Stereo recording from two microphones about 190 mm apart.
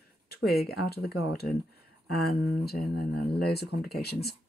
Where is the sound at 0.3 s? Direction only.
55° left (ahead or behind).